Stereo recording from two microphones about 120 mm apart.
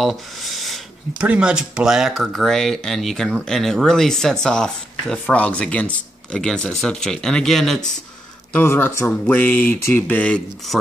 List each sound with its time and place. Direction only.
0.0 s a sound: centre (ahead or behind)
1.2 s speech: 10° right (ahead or behind)
8.5 s speech: 15° left (ahead or behind)